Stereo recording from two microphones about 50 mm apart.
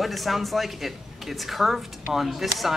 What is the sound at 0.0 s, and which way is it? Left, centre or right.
Speech, centre.